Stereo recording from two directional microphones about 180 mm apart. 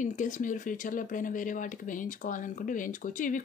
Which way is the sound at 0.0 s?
45° left (ahead or behind).